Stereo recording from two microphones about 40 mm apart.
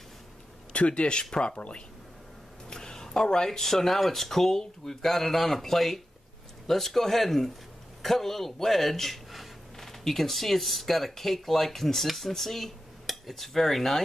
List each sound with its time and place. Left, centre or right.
0.7 s speech: left
2.7 s speech: centre